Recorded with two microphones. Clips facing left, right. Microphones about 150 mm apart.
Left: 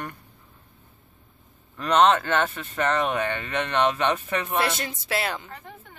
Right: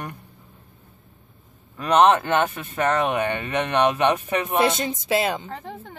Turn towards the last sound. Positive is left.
turn(degrees=-30)  # may be behind; listen again after turning